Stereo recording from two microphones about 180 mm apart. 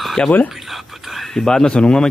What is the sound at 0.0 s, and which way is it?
Speech, 5° left (ahead or behind).